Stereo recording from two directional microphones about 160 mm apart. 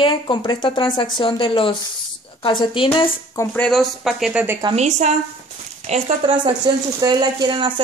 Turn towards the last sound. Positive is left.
turn(degrees=-30)  # may be behind; listen again after turning